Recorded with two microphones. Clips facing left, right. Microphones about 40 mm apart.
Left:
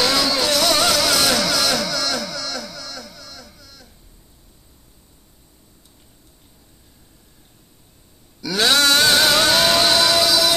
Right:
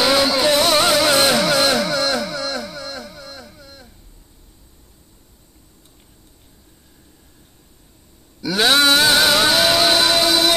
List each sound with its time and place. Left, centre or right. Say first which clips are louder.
0.0 s vehicle: right 3 dB; right
8.4 s a sound: right 2 dB; centre
9.0 s music: right 1 dB; centre
9.8 s music: right 1 dB; centre
10.2 s music: right 1 dB; right